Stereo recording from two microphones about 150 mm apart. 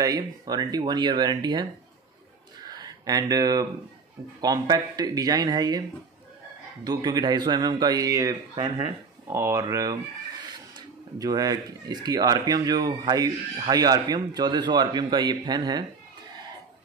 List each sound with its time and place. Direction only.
0.0 s speech: 25° right (ahead or behind)
2.6 s a sound: 25° right (ahead or behind)
4.4 s speech: 25° right (ahead or behind)
8.5 s speech: 35° right (ahead or behind)
9.3 s speech: 20° right (ahead or behind)
11.1 s speech: 25° right (ahead or behind)